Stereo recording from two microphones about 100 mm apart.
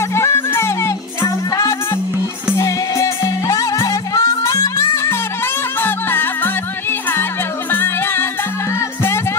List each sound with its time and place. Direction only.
0.1 s music: 25° left (ahead or behind)